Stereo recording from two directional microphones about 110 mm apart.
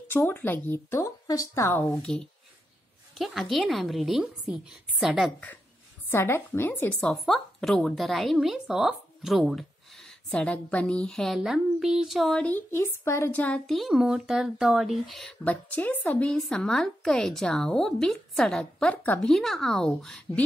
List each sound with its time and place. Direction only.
0.1 s speech: 15° left (ahead or behind)
1.9 s a woman's voice: 5° left (ahead or behind)
6.0 s speech: 20° left (ahead or behind)
7.0 s a woman's voice: 5° left (ahead or behind)
12.4 s speech: 20° left (ahead or behind)
13.7 s a woman's voice: centre (ahead or behind)
15.4 s a woman's voice: 15° left (ahead or behind)